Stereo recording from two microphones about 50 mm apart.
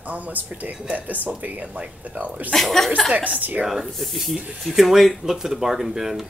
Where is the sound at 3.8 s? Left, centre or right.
Centre.